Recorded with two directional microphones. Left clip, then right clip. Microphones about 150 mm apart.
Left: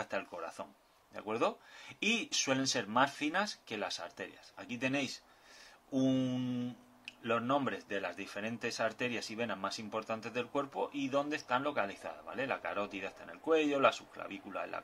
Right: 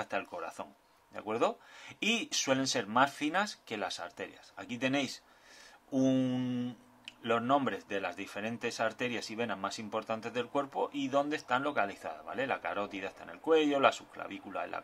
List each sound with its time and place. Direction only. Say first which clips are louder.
0.0 s speech: right 2 dB; 20° right (ahead or behind)